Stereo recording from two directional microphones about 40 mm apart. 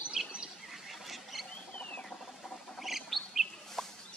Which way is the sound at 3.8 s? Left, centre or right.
Centre.